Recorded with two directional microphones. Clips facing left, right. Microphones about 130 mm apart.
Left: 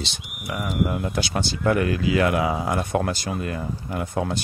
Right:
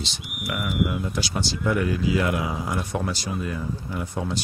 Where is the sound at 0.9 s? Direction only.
55° left (ahead or behind).